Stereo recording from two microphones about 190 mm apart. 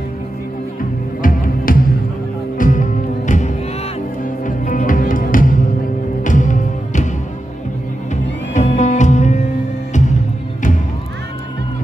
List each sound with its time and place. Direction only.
1.2 s music: 45° left (ahead or behind)
8.5 s music: 40° left (ahead or behind)